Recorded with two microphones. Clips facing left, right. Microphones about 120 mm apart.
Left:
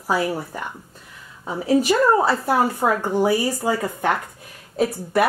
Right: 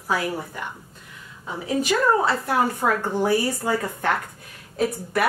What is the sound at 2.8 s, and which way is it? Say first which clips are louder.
Speech: left 3 dB; 15° left (ahead or behind).